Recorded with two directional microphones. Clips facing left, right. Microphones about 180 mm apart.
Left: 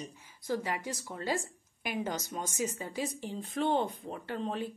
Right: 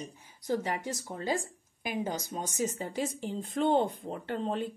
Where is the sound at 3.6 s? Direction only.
50° right (ahead or behind).